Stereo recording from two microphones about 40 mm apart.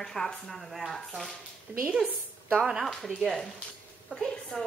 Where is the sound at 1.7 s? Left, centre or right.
Right.